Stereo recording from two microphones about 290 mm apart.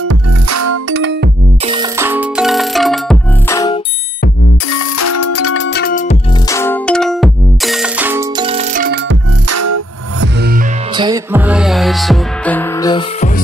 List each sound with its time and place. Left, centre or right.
0.1 s music: right
0.8 s music: right
1.7 s music: centre
4.7 s music: left
6.5 s music: centre; by 9.0 s right
9.5 s music: right
10.2 s music: right
11.0 s music: centre